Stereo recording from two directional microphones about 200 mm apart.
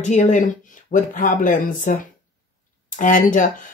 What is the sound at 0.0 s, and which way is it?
Speech, 35° left (ahead or behind).